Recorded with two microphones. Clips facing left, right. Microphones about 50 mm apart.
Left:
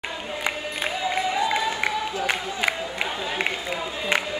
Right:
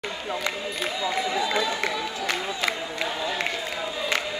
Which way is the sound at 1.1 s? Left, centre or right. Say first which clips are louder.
Left 2 dB; centre.